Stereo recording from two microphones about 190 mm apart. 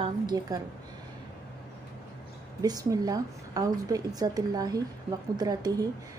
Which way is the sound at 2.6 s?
20° right (ahead or behind).